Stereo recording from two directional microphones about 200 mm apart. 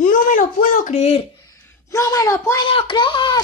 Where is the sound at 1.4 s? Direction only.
10° left (ahead or behind).